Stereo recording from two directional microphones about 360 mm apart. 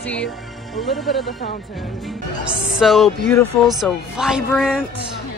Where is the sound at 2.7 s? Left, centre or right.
Centre.